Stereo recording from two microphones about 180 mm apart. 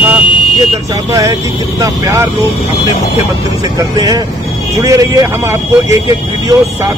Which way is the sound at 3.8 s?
20° right (ahead or behind).